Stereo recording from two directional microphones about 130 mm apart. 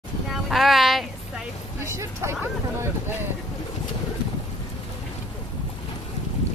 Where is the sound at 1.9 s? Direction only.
20° right (ahead or behind).